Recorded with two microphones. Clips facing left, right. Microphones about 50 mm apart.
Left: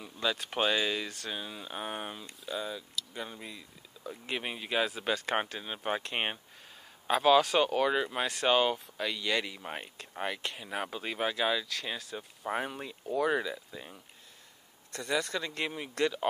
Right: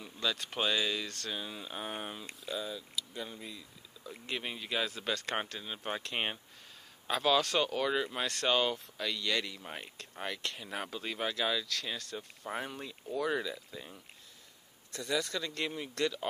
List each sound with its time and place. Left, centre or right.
0.0 s speech: centre
15.0 s speech: centre